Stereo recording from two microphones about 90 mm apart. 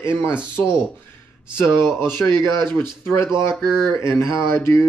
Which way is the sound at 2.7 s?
25° left (ahead or behind).